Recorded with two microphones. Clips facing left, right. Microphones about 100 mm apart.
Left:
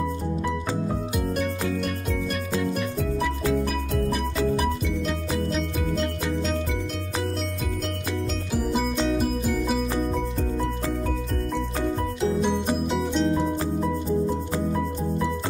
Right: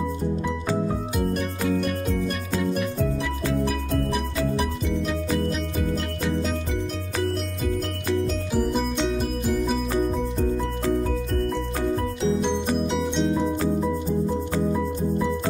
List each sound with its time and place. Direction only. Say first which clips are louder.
2.6 s music: right 2 dB; centre (ahead or behind)
5.5 s music: even; centre (ahead or behind)
8.9 s music: left 1 dB; 5° left (ahead or behind)
12.9 s music: even; centre (ahead or behind)